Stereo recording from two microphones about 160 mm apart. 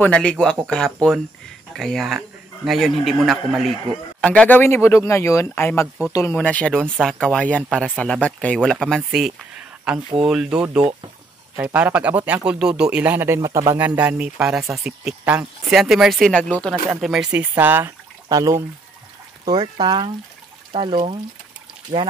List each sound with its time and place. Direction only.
0.0 s a man's voice: 5° left (ahead or behind); by 18.6 s 20° right (ahead or behind)
19.4 s speech: 30° right (ahead or behind)